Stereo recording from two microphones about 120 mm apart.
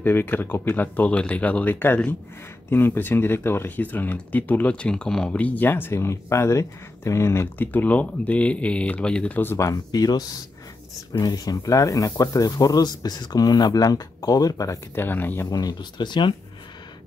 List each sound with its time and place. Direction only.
0.0 s speech: 15° left (ahead or behind)
15.5 s speech: 35° left (ahead or behind)